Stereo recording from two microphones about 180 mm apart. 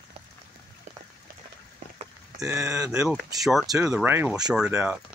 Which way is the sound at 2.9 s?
5° right (ahead or behind).